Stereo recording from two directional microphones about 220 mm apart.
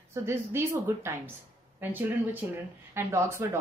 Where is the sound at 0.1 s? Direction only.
10° right (ahead or behind).